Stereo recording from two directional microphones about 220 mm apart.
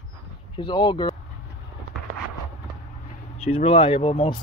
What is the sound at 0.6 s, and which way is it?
Speech, 20° left (ahead or behind).